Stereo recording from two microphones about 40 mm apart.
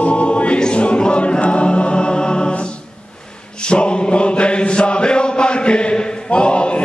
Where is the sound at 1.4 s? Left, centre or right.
Left.